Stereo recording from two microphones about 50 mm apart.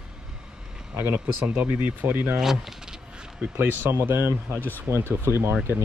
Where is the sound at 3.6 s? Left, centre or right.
Right.